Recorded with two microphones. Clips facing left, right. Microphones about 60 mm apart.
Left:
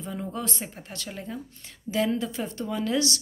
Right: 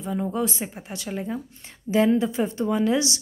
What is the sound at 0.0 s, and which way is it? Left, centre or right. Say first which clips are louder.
A woman's voice: right 7 dB; centre.